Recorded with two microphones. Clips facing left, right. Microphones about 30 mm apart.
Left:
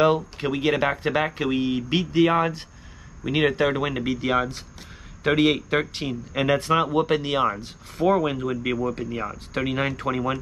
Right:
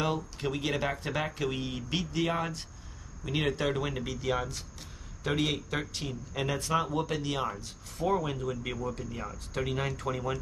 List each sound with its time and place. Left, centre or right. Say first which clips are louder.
0.0 s a man's voice: left 11 dB; left